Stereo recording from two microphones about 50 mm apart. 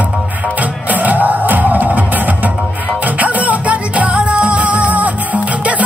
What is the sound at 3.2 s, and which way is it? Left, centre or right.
Music, right.